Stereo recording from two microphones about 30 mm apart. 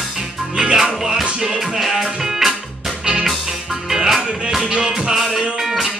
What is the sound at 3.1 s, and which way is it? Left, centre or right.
Music, right.